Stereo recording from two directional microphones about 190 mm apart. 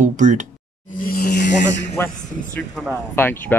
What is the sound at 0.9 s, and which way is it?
Speech, 50° left (ahead or behind).